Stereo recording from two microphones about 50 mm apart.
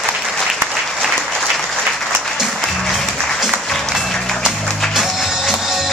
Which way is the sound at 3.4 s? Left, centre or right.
Centre.